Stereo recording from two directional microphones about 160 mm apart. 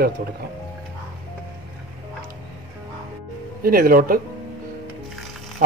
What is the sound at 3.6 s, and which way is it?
Speech, 65° right (ahead or behind).